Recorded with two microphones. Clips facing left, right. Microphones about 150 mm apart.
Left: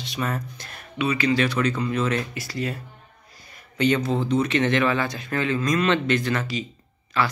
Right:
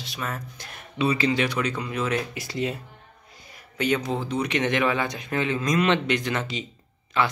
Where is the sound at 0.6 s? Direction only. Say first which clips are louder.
Even; 15° right (ahead or behind).